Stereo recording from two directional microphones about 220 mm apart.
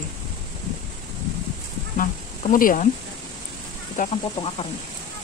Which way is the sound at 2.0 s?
40° left (ahead or behind).